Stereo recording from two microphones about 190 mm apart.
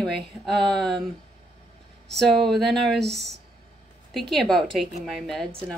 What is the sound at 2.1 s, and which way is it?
A woman's voice, centre (ahead or behind).